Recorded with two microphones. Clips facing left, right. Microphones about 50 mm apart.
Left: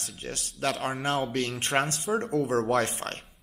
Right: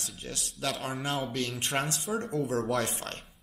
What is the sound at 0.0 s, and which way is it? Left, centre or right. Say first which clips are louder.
Speech: left 2 dB; left.